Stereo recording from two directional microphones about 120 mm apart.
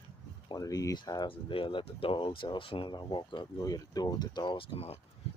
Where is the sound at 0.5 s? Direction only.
30° left (ahead or behind); by 4.9 s 55° left (ahead or behind).